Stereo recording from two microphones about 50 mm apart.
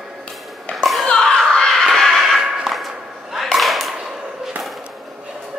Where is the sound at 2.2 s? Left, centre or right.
Centre.